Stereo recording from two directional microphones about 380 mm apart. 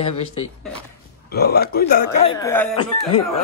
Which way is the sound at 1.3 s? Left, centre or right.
Left.